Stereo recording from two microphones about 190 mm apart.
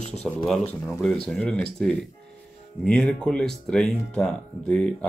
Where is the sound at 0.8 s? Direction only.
Centre (ahead or behind).